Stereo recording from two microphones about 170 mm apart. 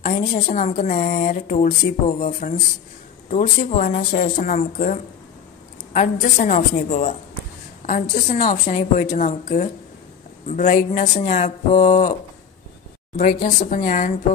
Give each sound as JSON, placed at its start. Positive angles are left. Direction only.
{"t": 0.0, "sound": "a woman's voice", "side_deg": 50}
{"t": 13.2, "sound": "a woman's voice", "side_deg": 50}